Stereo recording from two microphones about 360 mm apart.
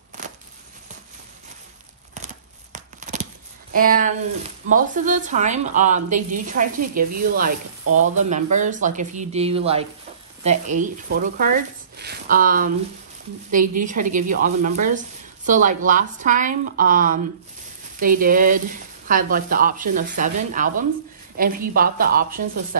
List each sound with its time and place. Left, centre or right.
0.2 s a sound: right
2.1 s tearing: centre
3.7 s a woman's voice: right
7.8 s speech: right
8.2 s a woman's voice: centre